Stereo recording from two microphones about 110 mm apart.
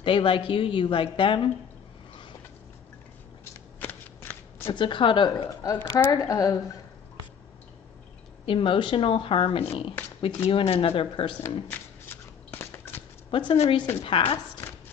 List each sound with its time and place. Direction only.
0.0 s a woman's voice: 50° left (ahead or behind)
3.8 s shuffling cards: 20° left (ahead or behind)
4.7 s a woman's voice: 50° left (ahead or behind); by 6.5 s 30° left (ahead or behind)
8.5 s speech: 50° left (ahead or behind)
11.7 s shuffling cards: 20° left (ahead or behind)
13.3 s a woman's voice: 45° left (ahead or behind)